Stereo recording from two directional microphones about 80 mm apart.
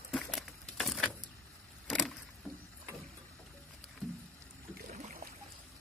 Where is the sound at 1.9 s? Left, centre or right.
Centre.